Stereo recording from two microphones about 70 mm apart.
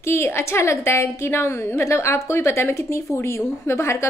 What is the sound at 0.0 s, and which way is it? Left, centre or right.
A woman's voice, left.